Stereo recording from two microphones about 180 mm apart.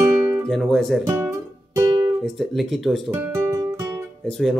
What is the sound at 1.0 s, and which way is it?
Music, 15° right (ahead or behind).